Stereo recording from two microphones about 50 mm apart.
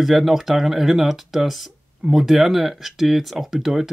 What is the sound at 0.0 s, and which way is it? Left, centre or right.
Speech, centre.